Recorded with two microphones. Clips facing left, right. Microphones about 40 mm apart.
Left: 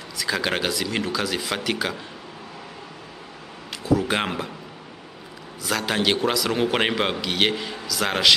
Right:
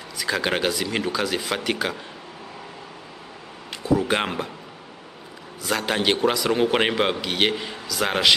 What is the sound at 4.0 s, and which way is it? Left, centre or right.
Speech, centre.